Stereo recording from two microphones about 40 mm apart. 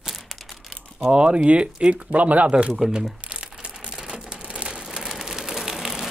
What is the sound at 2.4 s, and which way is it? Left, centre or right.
Speech, right.